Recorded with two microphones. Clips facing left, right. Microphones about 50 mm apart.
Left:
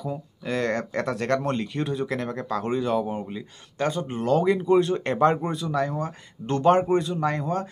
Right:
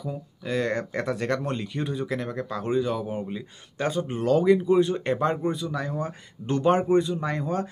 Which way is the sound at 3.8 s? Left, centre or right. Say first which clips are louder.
Left 1 dB; centre.